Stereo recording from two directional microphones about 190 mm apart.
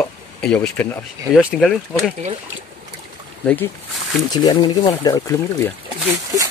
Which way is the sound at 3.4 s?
10° left (ahead or behind).